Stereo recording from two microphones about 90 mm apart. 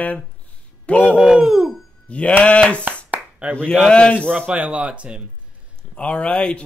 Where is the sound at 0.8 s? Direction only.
15° left (ahead or behind).